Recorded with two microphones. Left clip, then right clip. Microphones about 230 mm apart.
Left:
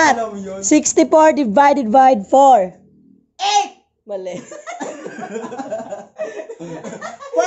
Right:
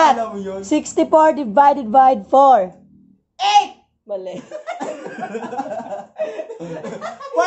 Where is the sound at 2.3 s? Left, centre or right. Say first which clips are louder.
Left 1 dB; centre.